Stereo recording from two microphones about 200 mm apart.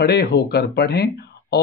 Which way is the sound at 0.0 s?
55° left (ahead or behind).